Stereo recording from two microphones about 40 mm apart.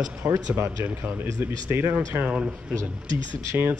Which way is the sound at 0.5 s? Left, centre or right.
Right.